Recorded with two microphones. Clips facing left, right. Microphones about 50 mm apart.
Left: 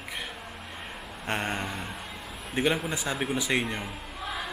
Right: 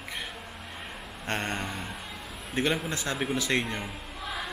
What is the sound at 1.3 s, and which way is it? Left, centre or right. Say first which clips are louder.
A man's voice: left 1 dB; centre.